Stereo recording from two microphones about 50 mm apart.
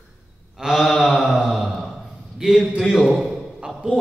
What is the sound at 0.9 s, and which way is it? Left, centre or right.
Mantra, left.